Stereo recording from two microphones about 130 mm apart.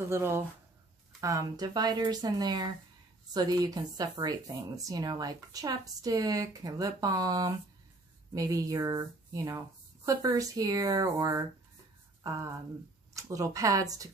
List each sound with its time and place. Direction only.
0.1 s a woman's voice: 20° right (ahead or behind)